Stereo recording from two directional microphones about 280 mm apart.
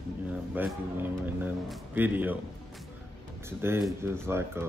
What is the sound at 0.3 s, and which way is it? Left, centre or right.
Speech, centre.